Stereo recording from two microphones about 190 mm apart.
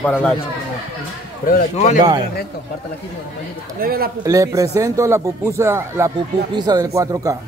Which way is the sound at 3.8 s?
50° right (ahead or behind).